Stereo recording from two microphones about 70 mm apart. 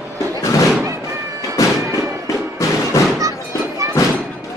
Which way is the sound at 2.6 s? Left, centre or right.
Left.